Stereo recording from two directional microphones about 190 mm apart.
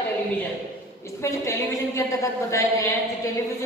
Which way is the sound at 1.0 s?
15° left (ahead or behind).